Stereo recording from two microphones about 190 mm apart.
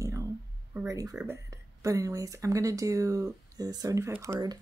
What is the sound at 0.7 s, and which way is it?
Speech, 15° right (ahead or behind).